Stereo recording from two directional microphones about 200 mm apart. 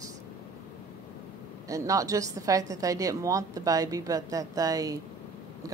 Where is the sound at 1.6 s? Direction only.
15° right (ahead or behind).